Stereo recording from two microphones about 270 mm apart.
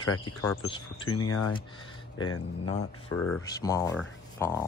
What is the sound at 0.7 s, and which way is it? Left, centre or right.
Speech, centre.